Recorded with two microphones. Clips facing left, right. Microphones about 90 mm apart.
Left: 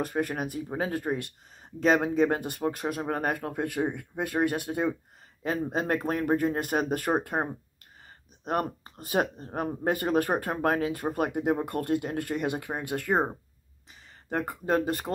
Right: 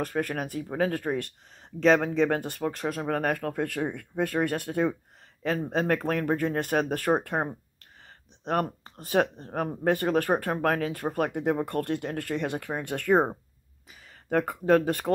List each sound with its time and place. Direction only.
0.0 s speech: 10° left (ahead or behind)
6.6 s speech: 10° left (ahead or behind)
8.5 s speech: 20° left (ahead or behind)
14.3 s speech: centre (ahead or behind)